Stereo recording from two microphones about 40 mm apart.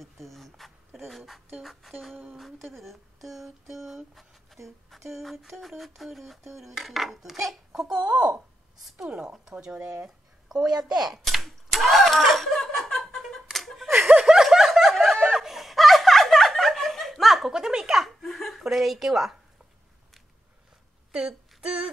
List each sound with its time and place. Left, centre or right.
0.0 s speech: centre
1.6 s a sound: centre
8.0 s a woman's voice: right
9.7 s a woman's voice: right
11.4 s a sound: centre
14.0 s snicker: centre
17.5 s a woman's voice: centre
17.9 s chuckle: centre
18.7 s a woman's voice: centre
21.1 s a sound: centre